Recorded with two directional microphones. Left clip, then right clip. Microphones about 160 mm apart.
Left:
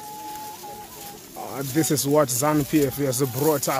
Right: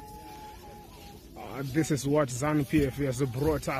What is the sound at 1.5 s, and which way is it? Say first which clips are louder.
Speech: left 6 dB; 5° left (ahead or behind).